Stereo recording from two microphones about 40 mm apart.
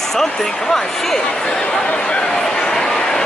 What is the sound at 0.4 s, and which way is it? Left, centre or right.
Speech, centre.